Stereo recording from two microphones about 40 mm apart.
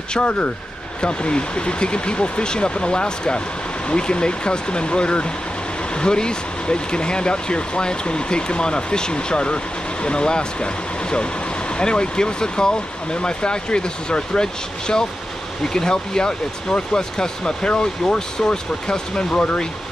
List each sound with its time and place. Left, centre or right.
0.1 s speech: left